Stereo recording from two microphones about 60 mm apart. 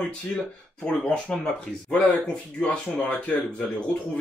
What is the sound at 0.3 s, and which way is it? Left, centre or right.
Speech, centre.